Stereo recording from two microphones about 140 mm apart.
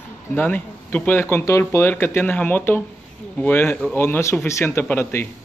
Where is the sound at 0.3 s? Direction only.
15° left (ahead or behind).